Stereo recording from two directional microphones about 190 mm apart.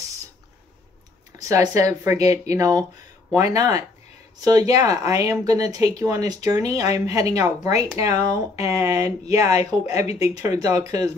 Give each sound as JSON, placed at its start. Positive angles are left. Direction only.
{"t": 1.4, "sound": "speech", "side_deg": -15}